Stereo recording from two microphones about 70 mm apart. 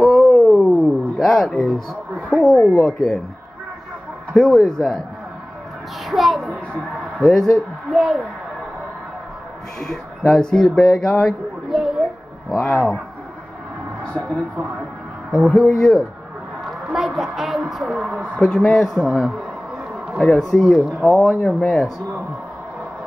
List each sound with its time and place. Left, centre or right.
0.0 s a sound: centre
2.8 s speech: centre
4.3 s speech: centre
6.0 s speech: centre
6.5 s a child's voice: right
7.2 s speech: centre
9.8 s speech: centre
11.7 s a sound: centre
12.6 s speech: centre
14.0 s speech: centre
16.9 s a woman's voice: centre
17.9 s speech: right
18.4 s speech: centre
20.2 s speech: centre